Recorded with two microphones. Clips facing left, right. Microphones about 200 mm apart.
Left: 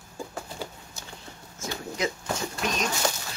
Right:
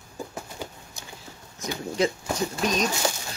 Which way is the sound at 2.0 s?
30° right (ahead or behind).